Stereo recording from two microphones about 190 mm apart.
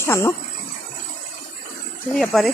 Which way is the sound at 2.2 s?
Centre (ahead or behind).